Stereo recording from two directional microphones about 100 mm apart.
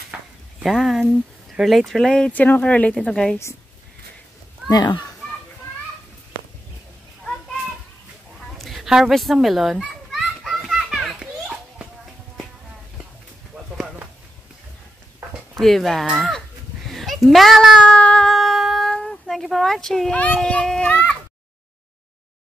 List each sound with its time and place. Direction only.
0.1 s a sound: 15° right (ahead or behind)
0.7 s speech: centre (ahead or behind)
4.6 s a child's voice: 45° left (ahead or behind)
8.5 s children playing: centre (ahead or behind)
15.6 s a woman's voice: centre (ahead or behind)
17.9 s a sound: 10° left (ahead or behind)
20.2 s speech: 15° left (ahead or behind)